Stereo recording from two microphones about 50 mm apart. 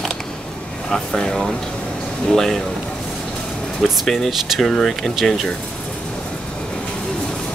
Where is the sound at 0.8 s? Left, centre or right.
Centre.